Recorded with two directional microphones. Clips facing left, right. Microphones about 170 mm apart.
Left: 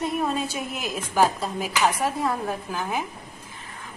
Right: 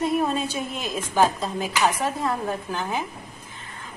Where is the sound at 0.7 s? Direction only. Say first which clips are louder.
Right 1 dB; 10° left (ahead or behind).